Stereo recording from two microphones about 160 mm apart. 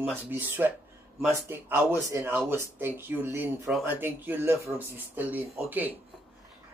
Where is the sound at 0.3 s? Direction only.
15° right (ahead or behind).